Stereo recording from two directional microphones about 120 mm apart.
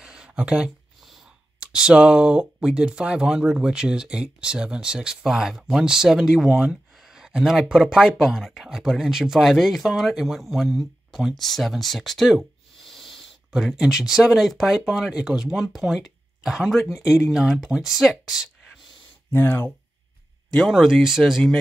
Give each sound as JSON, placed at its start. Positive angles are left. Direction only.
{"t": 0.0, "sound": "a sound", "side_deg": -5}
{"t": 1.6, "sound": "speech", "side_deg": -5}
{"t": 19.3, "sound": "speech", "side_deg": 15}
{"t": 20.5, "sound": "speech", "side_deg": 0}